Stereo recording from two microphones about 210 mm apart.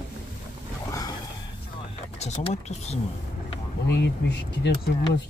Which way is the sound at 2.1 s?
30° left (ahead or behind).